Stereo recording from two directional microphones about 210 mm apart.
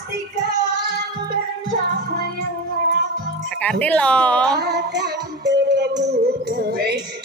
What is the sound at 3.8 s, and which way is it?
Speech, 5° left (ahead or behind).